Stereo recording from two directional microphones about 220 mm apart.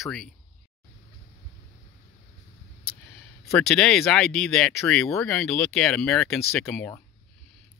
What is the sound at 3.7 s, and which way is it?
Speech, 5° left (ahead or behind).